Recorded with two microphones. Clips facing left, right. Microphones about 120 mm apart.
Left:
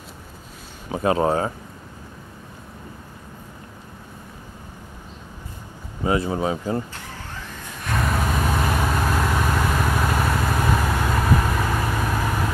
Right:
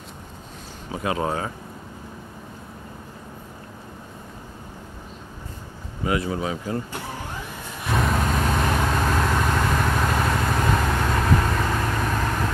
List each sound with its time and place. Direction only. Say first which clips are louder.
0.9 s speech: left 5 dB; 35° left (ahead or behind)
6.0 s speech: left 3 dB; 30° left (ahead or behind)
6.9 s vehicle: right 4 dB; 15° right (ahead or behind)
7.8 s vehicle: right 1 dB; centre (ahead or behind)